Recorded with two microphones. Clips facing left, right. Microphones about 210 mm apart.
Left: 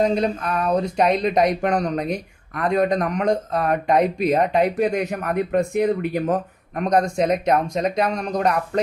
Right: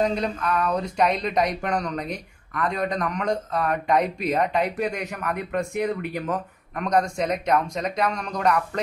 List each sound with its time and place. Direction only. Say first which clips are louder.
0.0 s speech: left 4 dB; 40° left (ahead or behind)